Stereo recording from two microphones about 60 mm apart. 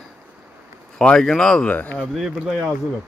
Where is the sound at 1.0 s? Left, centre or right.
Centre.